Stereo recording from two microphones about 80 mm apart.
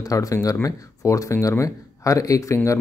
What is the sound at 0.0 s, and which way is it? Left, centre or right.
Speech, left.